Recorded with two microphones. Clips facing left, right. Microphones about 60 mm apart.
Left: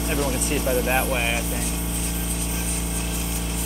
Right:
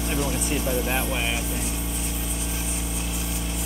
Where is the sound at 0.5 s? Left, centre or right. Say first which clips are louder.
Left 5 dB; centre.